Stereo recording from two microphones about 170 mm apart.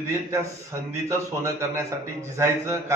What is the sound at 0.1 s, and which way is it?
A man's voice, 15° right (ahead or behind).